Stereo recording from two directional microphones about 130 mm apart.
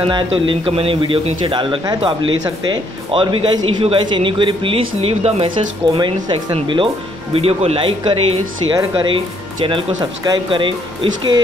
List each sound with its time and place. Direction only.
0.0 s speech: 45° right (ahead or behind)
5.9 s speech: 35° right (ahead or behind)